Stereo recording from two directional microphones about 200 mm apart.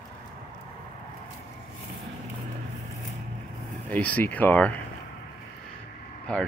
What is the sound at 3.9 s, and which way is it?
Speech, 10° left (ahead or behind).